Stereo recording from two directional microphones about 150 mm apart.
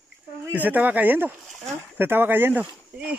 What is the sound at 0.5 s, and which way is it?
Speech, 10° right (ahead or behind).